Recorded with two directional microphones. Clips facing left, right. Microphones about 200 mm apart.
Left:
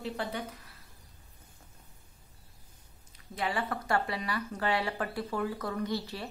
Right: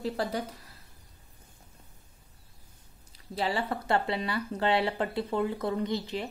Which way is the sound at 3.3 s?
25° right (ahead or behind).